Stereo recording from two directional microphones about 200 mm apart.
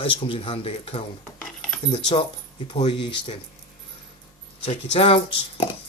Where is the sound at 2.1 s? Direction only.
25° left (ahead or behind).